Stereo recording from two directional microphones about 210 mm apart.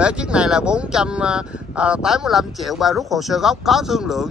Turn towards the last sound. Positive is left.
turn(degrees=0)  # may be behind; listen again after turning